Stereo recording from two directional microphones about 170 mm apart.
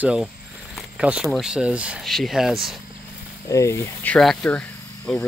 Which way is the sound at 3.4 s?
15° left (ahead or behind).